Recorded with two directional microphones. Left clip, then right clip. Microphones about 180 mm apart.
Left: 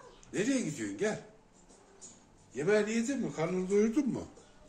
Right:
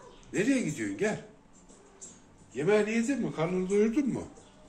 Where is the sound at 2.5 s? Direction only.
10° left (ahead or behind).